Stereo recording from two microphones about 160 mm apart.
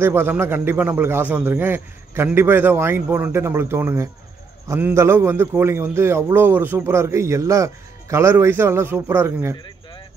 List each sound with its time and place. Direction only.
0.0 s a man's voice: 15° right (ahead or behind)